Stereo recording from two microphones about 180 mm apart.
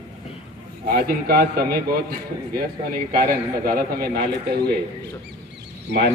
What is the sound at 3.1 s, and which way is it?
A man's voice, 55° right (ahead or behind).